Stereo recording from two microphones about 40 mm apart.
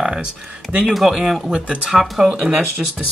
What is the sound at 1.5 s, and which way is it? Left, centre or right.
Speech, right.